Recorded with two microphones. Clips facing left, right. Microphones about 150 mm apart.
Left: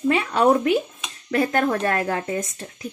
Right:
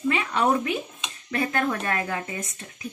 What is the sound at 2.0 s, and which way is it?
Speech, 50° left (ahead or behind).